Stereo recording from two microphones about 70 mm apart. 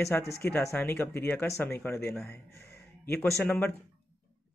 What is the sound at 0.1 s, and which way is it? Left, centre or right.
Speech, left.